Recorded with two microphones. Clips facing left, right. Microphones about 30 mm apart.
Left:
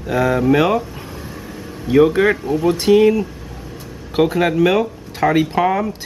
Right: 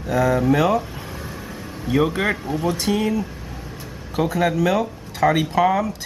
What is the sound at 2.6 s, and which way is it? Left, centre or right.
Speech, left.